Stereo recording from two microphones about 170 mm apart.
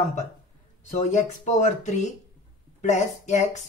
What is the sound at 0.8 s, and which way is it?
Speech, 45° left (ahead or behind).